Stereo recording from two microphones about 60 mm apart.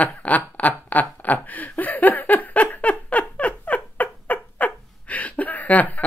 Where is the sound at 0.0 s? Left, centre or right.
Left.